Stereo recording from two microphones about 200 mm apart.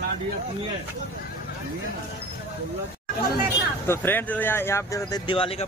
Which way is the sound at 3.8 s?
10° left (ahead or behind).